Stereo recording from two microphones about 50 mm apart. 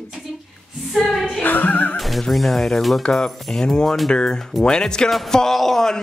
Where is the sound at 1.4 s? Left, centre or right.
Left.